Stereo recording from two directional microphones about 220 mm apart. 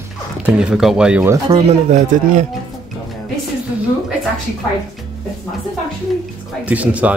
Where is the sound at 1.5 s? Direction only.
30° right (ahead or behind).